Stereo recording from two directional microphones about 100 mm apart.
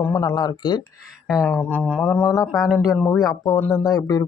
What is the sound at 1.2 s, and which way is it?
Speech, 5° right (ahead or behind).